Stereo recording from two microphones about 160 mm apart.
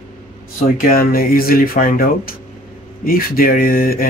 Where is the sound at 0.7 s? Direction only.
65° left (ahead or behind).